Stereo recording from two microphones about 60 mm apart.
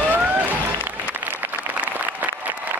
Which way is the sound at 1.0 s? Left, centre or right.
Right.